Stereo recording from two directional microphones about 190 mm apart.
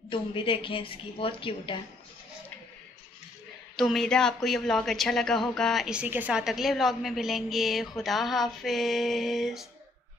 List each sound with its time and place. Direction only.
0.1 s a woman's voice: 25° left (ahead or behind)
3.7 s speech: centre (ahead or behind)